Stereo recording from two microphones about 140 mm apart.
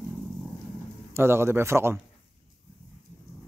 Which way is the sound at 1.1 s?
20° right (ahead or behind).